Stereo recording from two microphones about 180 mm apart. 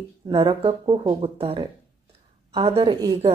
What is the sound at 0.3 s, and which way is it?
Speech, 30° right (ahead or behind).